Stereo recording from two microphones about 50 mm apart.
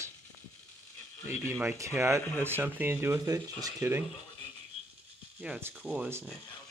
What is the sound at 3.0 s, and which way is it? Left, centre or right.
Speech, right.